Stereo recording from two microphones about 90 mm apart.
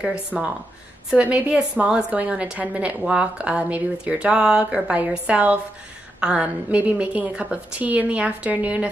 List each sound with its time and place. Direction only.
0.0 s a woman's voice: 10° right (ahead or behind)